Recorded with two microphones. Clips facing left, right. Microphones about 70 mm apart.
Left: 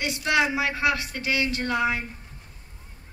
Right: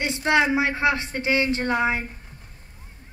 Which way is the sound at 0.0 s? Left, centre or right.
Right.